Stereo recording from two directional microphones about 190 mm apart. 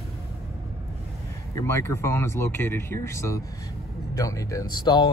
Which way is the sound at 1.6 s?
15° left (ahead or behind).